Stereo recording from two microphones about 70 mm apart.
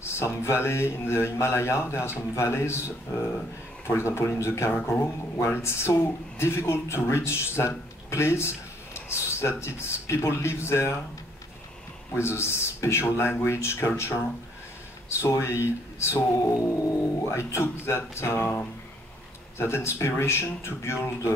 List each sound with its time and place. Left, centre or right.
0.0 s speech: left
12.1 s speech: left
15.2 s speech: left
16.3 s speech: left